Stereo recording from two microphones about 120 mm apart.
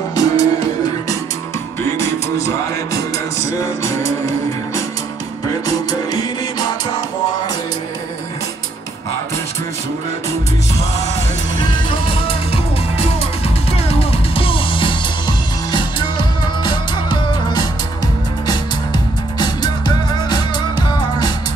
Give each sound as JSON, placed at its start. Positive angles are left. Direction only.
{"t": 0.1, "sound": "music", "side_deg": 30}
{"t": 2.0, "sound": "music", "side_deg": 25}
{"t": 5.7, "sound": "music", "side_deg": 30}
{"t": 11.5, "sound": "music", "side_deg": 45}
{"t": 19.3, "sound": "music", "side_deg": 35}